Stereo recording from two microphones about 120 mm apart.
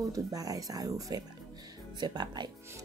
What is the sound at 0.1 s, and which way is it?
Speech, 30° right (ahead or behind).